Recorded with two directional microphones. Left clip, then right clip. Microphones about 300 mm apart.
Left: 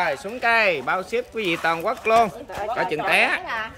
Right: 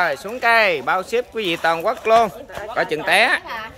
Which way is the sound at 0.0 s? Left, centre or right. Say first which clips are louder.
Right 3 dB; centre.